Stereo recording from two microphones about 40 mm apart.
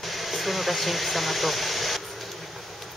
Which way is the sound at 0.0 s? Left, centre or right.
Centre.